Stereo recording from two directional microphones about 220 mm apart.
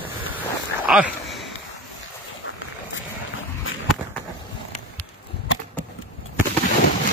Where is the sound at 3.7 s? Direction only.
65° left (ahead or behind).